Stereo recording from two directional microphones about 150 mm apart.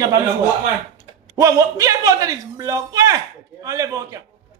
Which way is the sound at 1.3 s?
20° right (ahead or behind).